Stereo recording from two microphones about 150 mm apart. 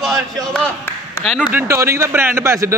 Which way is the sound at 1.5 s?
15° right (ahead or behind).